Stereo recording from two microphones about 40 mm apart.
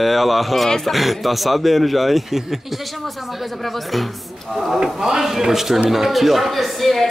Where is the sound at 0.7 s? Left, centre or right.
Centre.